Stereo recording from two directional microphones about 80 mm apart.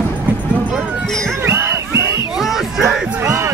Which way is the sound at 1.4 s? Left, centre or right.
Right.